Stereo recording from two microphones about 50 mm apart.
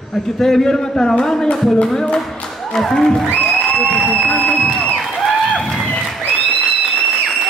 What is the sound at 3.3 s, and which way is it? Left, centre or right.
Music, left.